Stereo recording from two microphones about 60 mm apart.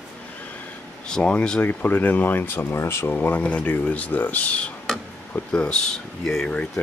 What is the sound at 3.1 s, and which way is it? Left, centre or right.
Speech, left.